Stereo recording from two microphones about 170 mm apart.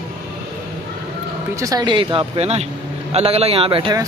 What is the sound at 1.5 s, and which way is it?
A man's voice, 20° right (ahead or behind).